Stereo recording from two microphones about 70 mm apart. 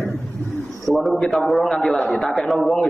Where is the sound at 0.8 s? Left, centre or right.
Centre.